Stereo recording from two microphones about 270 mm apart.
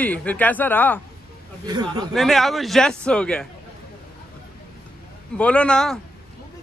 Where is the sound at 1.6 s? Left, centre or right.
Centre.